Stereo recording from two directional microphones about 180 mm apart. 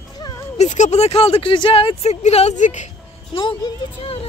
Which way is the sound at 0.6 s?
40° left (ahead or behind).